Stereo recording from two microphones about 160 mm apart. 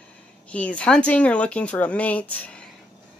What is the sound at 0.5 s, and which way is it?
Speech, 10° left (ahead or behind).